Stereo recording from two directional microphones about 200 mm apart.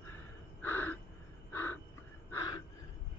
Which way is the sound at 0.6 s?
10° left (ahead or behind).